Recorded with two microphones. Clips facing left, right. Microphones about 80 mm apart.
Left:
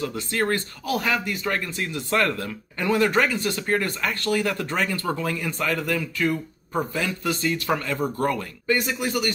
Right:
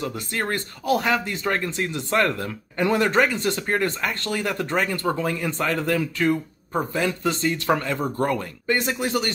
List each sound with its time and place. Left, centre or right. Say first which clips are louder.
0.0 s speech: left 2 dB; centre; by 6.3 s right
6.7 s speech: right 2 dB; right